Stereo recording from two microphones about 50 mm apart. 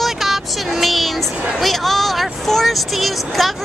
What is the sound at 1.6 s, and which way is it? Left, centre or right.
Speech, centre.